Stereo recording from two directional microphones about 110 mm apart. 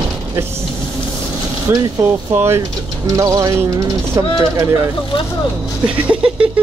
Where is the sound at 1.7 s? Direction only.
20° right (ahead or behind).